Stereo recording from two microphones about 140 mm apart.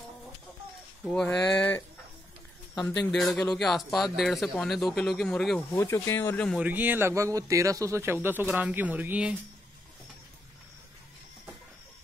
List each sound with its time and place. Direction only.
1.0 s speech: 5° left (ahead or behind)
2.7 s speech: 30° left (ahead or behind)
3.1 s speech: 5° left (ahead or behind)
5.8 s speech: 20° left (ahead or behind)
6.6 s speech: 10° right (ahead or behind)